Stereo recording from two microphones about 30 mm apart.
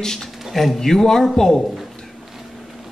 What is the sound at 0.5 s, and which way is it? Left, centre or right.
Speech, centre.